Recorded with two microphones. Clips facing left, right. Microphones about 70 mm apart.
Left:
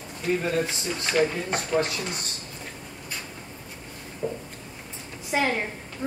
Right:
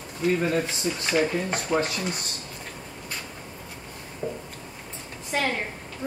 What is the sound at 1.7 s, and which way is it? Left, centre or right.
Speech, centre.